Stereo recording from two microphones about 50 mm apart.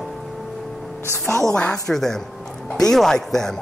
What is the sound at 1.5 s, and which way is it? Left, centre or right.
Speech, centre.